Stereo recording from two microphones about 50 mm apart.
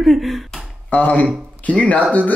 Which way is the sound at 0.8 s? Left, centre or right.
Left.